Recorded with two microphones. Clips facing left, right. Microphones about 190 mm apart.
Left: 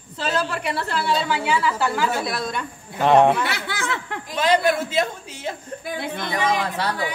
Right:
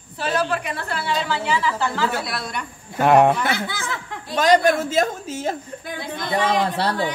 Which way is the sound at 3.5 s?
65° left (ahead or behind).